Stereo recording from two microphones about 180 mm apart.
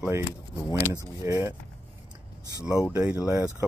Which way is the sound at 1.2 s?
15° right (ahead or behind).